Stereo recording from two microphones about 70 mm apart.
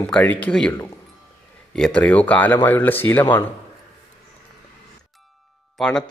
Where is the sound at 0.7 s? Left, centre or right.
Left.